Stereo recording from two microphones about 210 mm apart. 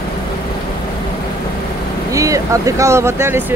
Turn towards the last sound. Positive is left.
turn(degrees=-10)  # may be behind; listen again after turning